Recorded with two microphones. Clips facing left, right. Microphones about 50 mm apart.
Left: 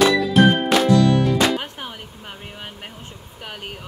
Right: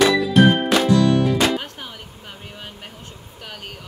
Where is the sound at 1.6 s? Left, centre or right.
Centre.